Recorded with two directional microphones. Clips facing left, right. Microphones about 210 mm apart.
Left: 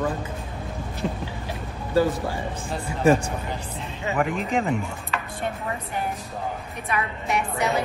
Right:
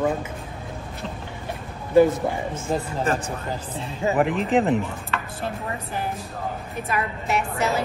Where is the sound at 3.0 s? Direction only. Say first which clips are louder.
Left 8 dB; 10° left (ahead or behind).